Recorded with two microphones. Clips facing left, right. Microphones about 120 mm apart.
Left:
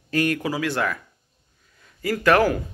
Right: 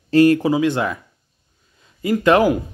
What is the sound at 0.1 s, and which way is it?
Speech, 30° right (ahead or behind).